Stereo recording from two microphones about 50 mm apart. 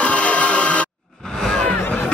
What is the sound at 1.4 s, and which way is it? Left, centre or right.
Music, centre.